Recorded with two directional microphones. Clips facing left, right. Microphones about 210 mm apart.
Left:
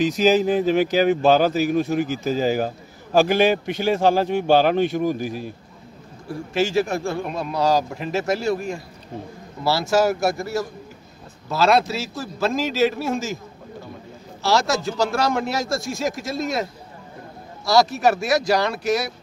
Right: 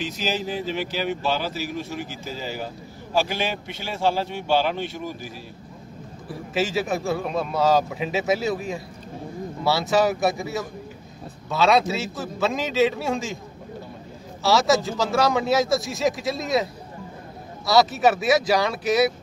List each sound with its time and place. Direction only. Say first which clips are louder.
0.2 s speech: left 10 dB; 50° left (ahead or behind)
6.2 s speech: left 3 dB; centre (ahead or behind)
14.4 s speech: right 1 dB; centre (ahead or behind)
17.6 s speech: left 1 dB; centre (ahead or behind)